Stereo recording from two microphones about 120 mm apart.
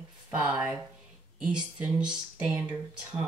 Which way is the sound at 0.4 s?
15° right (ahead or behind).